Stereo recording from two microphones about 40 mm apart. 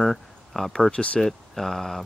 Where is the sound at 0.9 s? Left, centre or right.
Left.